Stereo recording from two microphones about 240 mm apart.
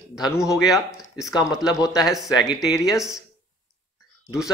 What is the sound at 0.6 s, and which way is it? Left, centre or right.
Speech, centre.